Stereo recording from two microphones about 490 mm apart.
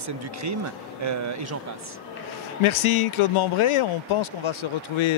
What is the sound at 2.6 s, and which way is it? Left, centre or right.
Speech, left.